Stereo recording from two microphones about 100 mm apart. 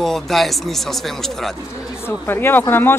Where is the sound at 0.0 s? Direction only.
Centre (ahead or behind).